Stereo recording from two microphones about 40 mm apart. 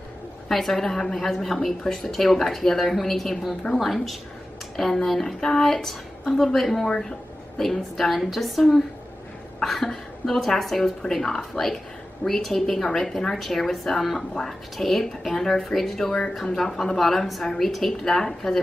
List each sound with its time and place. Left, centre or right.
0.5 s a woman's voice: centre
1.8 s a woman's voice: centre
2.0 s a woman's voice: centre
6.9 s a woman's voice: centre